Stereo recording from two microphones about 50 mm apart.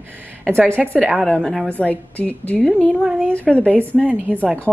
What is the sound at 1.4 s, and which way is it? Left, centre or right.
Speech, centre.